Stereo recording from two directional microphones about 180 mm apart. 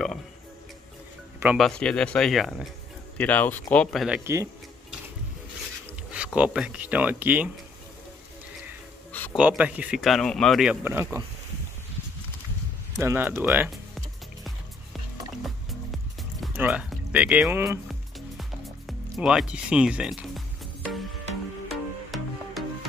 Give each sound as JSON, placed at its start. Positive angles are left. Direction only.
{"t": 1.4, "sound": "speech", "side_deg": -10}
{"t": 1.7, "sound": "speech", "side_deg": 5}
{"t": 4.2, "sound": "speech", "side_deg": -15}
{"t": 6.1, "sound": "speech", "side_deg": -5}
{"t": 9.4, "sound": "speech", "side_deg": -5}
{"t": 12.9, "sound": "speech", "side_deg": -15}
{"t": 15.9, "sound": "music", "side_deg": -5}
{"t": 18.4, "sound": "music", "side_deg": 0}